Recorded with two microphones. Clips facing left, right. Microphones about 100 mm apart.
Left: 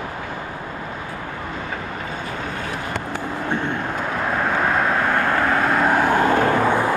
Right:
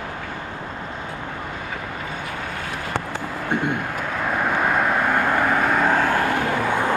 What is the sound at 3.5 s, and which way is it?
Vehicle, 15° right (ahead or behind).